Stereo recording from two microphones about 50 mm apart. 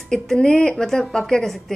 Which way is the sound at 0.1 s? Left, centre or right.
Centre.